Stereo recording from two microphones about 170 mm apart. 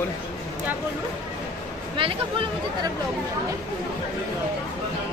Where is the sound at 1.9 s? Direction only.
30° right (ahead or behind).